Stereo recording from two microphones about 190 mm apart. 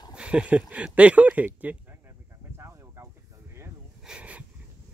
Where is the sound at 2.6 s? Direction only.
15° right (ahead or behind).